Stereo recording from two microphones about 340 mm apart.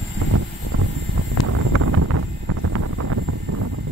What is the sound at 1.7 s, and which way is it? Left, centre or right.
Vehicle, right.